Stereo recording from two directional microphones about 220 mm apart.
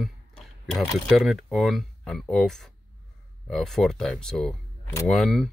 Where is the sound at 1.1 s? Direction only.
Centre (ahead or behind).